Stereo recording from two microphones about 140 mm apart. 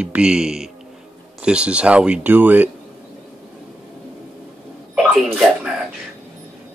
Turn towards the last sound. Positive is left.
turn(degrees=-5)  # may be behind; listen again after turning